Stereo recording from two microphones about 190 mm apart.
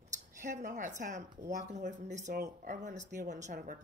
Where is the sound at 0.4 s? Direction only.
40° right (ahead or behind).